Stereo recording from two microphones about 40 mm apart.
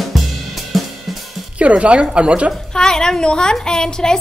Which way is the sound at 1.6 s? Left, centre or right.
Right.